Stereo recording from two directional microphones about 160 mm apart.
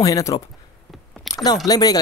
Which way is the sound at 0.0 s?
20° left (ahead or behind).